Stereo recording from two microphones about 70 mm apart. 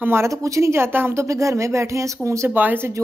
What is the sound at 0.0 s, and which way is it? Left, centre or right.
Speech, right.